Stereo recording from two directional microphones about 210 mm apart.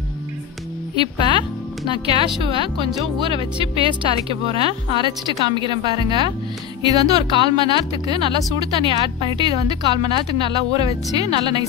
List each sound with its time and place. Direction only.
0.9 s speech: 25° right (ahead or behind)